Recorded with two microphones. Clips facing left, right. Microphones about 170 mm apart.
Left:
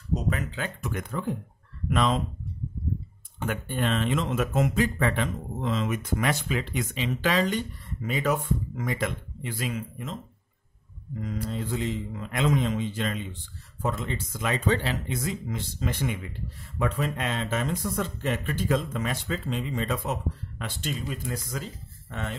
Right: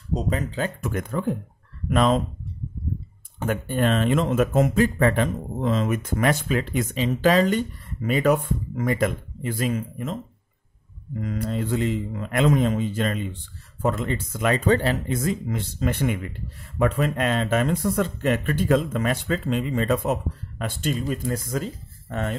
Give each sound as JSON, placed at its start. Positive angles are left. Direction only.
{"t": 0.1, "sound": "speech", "side_deg": -35}
{"t": 0.7, "sound": "speech", "side_deg": -50}
{"t": 3.3, "sound": "speech", "side_deg": -45}
{"t": 11.1, "sound": "speech", "side_deg": -60}